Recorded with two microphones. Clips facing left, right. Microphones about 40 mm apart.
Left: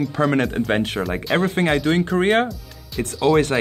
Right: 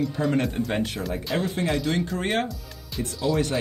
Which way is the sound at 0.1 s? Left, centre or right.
Left.